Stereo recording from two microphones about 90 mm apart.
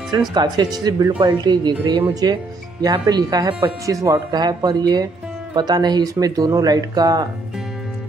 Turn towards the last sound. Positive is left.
turn(degrees=-50)  # may be behind; listen again after turning